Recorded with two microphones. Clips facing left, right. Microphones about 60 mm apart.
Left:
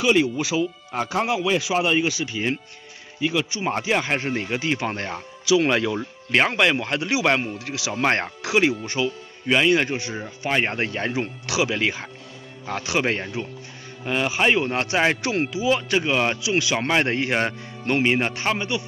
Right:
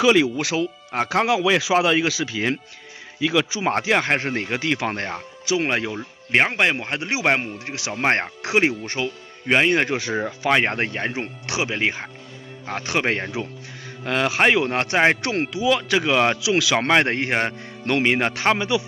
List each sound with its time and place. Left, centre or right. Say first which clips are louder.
0.4 s speech: even; right
3.2 s speech: right 3 dB; right
5.1 s speech: left 4 dB; right
5.6 s a man's voice: left 3 dB; right
10.2 s speech: right 3 dB; right
11.0 s speech: left 1 dB; right
12.9 s speech: right 1 dB; right
14.0 s speech: right 2 dB; right
14.7 s speech: right 3 dB; right
15.2 s speech: right 1 dB; right
16.8 s speech: right 3 dB; right
17.8 s speech: right 1 dB; right